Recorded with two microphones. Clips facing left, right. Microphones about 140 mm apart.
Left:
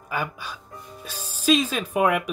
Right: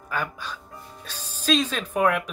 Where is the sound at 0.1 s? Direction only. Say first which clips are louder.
Left 1 dB; 10° left (ahead or behind).